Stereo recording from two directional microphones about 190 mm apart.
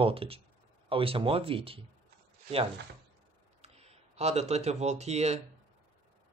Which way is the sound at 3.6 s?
35° right (ahead or behind).